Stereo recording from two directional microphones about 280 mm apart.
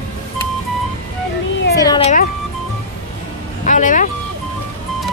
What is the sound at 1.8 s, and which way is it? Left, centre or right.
Speech, centre.